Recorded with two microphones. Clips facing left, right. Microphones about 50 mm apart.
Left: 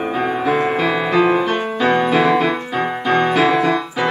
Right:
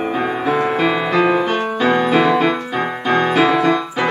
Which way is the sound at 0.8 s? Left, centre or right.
Centre.